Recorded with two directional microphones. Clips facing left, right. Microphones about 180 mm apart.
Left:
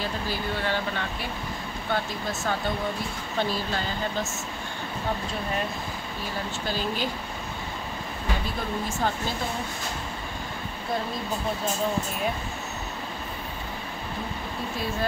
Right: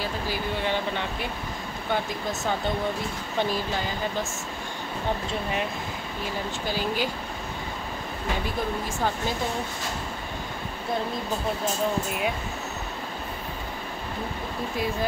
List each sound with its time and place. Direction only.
0.0 s speech: 15° right (ahead or behind)
3.3 s speech: 15° right (ahead or behind)
6.7 s speech: 10° right (ahead or behind)